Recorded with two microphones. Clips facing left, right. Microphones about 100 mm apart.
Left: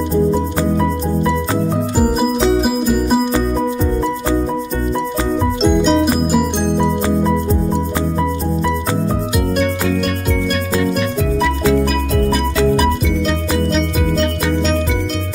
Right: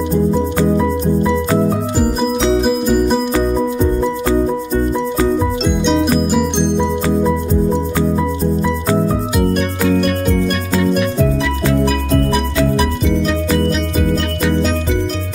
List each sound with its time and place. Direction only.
2.6 s music: 5° left (ahead or behind)
5.6 s music: centre (ahead or behind)